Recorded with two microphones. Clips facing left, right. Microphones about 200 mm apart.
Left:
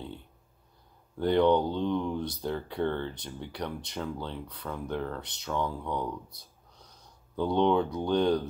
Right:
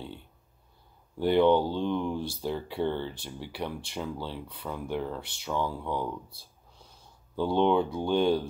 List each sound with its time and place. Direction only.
1.1 s speech: 5° right (ahead or behind)
2.1 s speech: 25° right (ahead or behind)
2.4 s speech: 5° right (ahead or behind)
6.3 s a sound: 25° right (ahead or behind)
7.3 s speech: 5° right (ahead or behind)